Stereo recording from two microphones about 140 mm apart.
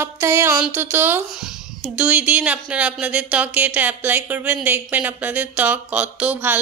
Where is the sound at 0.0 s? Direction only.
20° right (ahead or behind).